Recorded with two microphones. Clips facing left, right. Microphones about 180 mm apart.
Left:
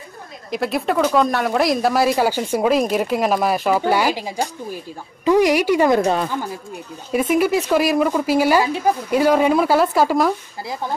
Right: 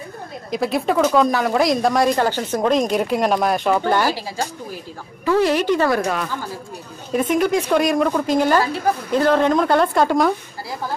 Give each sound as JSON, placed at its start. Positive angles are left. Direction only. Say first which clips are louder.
{"t": 0.5, "sound": "a woman's voice", "louder": "right 1 dB", "side_deg": 0}
{"t": 7.1, "sound": "a woman's voice", "louder": "left 1 dB", "side_deg": 5}